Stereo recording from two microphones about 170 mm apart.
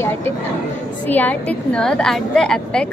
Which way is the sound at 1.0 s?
10° left (ahead or behind).